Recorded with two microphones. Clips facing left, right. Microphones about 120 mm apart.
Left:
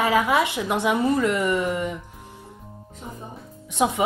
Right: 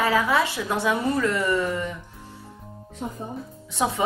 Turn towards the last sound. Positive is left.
turn(degrees=15)  # may be behind; listen again after turning